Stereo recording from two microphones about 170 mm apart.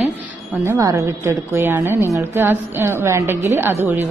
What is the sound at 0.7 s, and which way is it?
A woman's voice, 20° right (ahead or behind).